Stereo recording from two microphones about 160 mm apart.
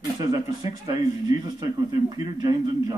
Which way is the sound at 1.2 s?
25° right (ahead or behind).